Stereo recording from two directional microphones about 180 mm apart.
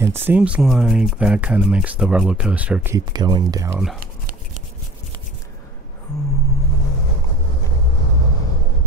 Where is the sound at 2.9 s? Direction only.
25° right (ahead or behind).